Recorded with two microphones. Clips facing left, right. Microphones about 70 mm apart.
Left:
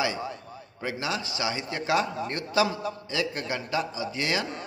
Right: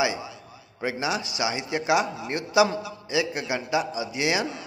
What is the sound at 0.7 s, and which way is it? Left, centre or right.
A man's voice, right.